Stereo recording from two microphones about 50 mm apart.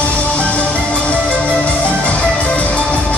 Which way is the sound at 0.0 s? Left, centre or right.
Left.